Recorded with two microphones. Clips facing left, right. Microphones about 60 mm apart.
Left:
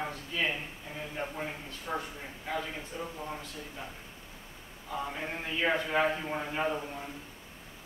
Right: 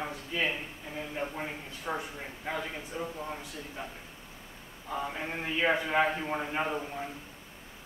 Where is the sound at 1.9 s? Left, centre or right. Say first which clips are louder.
Right 1 dB; right.